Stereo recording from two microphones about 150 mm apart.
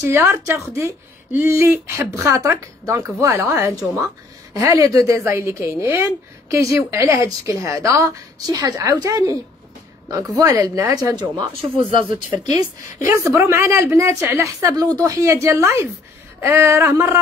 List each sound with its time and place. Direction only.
0.0 s speech: 15° right (ahead or behind); by 12.0 s 30° right (ahead or behind)
12.5 s speech: 20° right (ahead or behind)
16.3 s a sound: 15° right (ahead or behind)